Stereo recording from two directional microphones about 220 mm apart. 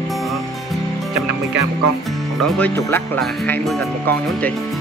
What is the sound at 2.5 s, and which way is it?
Speech, 10° left (ahead or behind).